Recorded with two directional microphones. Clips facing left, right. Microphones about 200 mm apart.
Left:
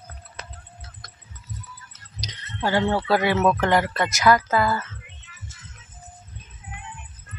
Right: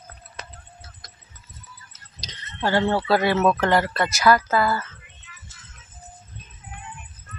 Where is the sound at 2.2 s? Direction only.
15° left (ahead or behind).